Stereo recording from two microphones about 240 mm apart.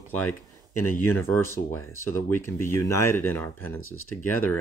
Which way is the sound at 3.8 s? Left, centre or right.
Left.